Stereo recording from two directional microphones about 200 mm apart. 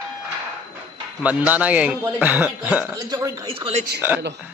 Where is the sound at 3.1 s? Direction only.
20° right (ahead or behind).